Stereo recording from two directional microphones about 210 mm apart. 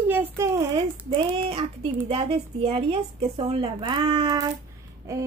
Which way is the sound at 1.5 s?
25° right (ahead or behind).